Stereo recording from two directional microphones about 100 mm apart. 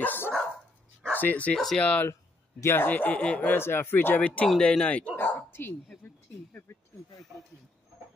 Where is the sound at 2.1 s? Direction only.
30° left (ahead or behind).